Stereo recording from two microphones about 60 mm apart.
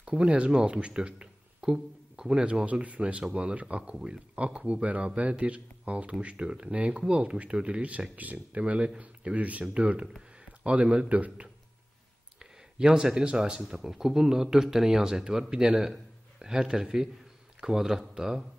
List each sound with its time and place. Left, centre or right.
0.0 s speech: centre
2.6 s speech: right
12.7 s a man's voice: centre